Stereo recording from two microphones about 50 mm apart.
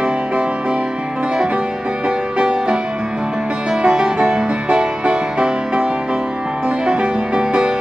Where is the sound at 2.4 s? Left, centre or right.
Centre.